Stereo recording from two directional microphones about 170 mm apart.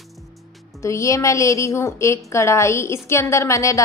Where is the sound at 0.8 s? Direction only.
20° left (ahead or behind).